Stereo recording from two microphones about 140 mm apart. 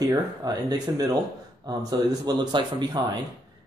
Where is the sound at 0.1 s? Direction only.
30° right (ahead or behind).